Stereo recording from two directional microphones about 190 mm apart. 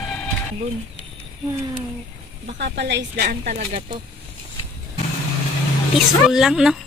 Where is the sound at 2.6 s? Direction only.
65° right (ahead or behind).